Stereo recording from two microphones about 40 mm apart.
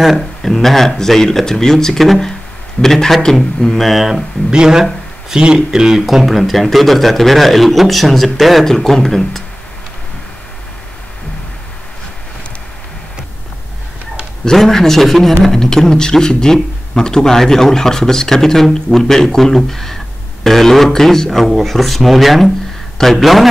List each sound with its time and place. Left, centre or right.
0.0 s a man's voice: centre
4.5 s speech: centre
6.0 s a man's voice: centre
14.4 s a man's voice: centre
22.9 s a man's voice: centre
23.2 s a man's voice: centre